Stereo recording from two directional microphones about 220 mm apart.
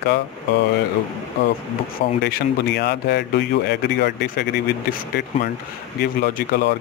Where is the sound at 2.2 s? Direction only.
45° left (ahead or behind).